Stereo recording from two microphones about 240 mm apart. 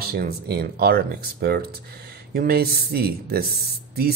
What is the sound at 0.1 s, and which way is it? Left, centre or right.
Speech, right.